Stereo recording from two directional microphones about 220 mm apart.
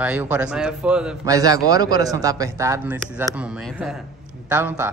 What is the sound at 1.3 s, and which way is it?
A man's voice, 15° right (ahead or behind).